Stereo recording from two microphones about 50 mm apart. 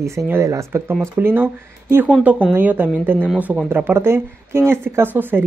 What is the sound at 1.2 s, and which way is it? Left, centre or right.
Speech, right.